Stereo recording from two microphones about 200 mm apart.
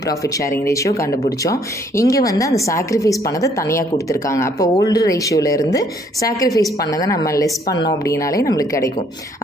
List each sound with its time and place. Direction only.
0.2 s a woman's voice: 15° left (ahead or behind)